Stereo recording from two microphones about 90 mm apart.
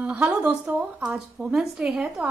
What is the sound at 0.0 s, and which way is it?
A woman's voice, 15° right (ahead or behind).